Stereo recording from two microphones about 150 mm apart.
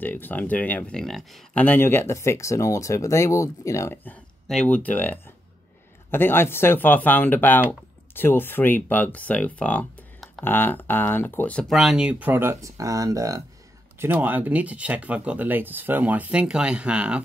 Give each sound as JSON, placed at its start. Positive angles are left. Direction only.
{"t": 0.0, "sound": "speech", "side_deg": 10}
{"t": 1.6, "sound": "speech", "side_deg": 15}